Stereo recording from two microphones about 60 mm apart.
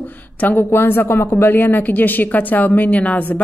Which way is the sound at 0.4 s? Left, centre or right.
Left.